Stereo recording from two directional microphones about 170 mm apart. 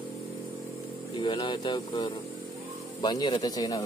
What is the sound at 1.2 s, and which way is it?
A man's voice, 30° left (ahead or behind).